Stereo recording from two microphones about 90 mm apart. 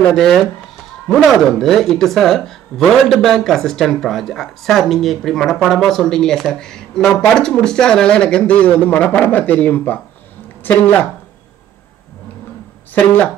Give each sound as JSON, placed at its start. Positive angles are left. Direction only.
{"t": 0.1, "sound": "a woman's voice", "side_deg": 5}